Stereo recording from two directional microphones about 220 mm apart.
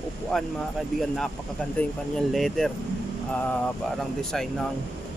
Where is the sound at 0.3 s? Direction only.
Centre (ahead or behind).